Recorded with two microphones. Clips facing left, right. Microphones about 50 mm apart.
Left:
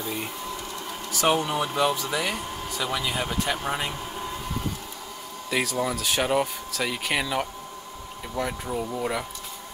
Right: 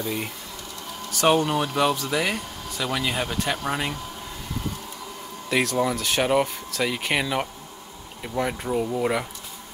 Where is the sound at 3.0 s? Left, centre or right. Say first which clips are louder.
Right 2 dB; right.